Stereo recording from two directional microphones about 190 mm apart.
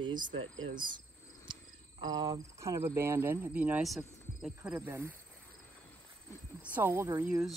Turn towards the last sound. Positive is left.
turn(degrees=-15)  # may be behind; listen again after turning